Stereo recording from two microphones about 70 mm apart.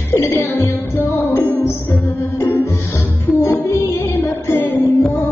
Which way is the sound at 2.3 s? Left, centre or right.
Left.